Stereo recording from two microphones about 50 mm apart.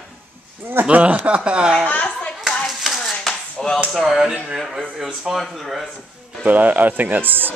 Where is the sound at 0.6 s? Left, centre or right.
Right.